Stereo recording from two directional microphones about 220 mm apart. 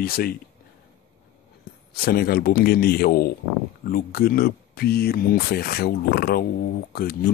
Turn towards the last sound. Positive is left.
turn(degrees=45)  # may be behind; listen again after turning